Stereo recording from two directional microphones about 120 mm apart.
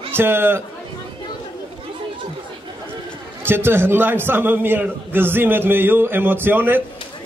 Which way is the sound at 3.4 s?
20° right (ahead or behind).